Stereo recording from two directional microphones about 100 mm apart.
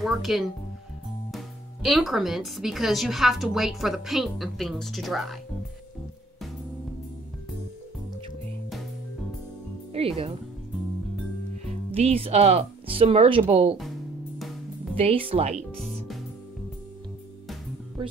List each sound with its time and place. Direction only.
0.0 s speech: centre (ahead or behind)
9.9 s speech: 75° right (ahead or behind)
11.9 s speech: 80° right
15.0 s speech: 70° right (ahead or behind)
15.5 s speech: centre (ahead or behind)